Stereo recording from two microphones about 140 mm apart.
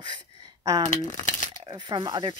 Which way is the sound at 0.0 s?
25° right (ahead or behind).